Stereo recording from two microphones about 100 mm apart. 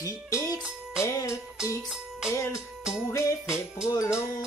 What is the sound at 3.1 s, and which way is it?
Music, 30° left (ahead or behind).